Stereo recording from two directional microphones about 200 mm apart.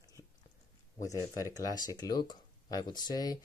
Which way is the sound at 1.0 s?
15° left (ahead or behind).